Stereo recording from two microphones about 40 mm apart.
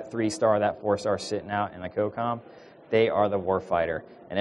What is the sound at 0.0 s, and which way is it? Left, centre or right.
A man's voice, centre.